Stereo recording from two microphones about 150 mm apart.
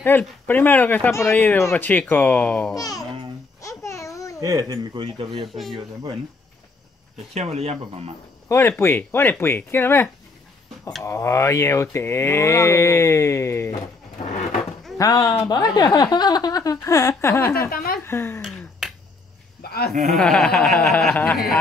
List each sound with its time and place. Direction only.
0.0 s speech: 15° left (ahead or behind)
2.7 s speech: 25° left (ahead or behind)
3.6 s babbling: 20° left (ahead or behind)
4.4 s speech: 25° right (ahead or behind)
5.5 s speech: centre (ahead or behind)
7.3 s speech: 45° right (ahead or behind)
8.5 s speech: 15° left (ahead or behind)
11.1 s mantra: 20° left (ahead or behind)
15.0 s mantra: 25° left (ahead or behind)
17.6 s a woman's voice: 75° left (ahead or behind)
18.0 s speech: 15° left (ahead or behind)
18.4 s finger snapping: centre (ahead or behind)
19.6 s a sound: 90° left
19.9 s speech: centre (ahead or behind)